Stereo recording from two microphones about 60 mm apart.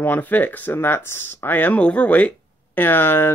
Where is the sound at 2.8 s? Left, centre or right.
Left.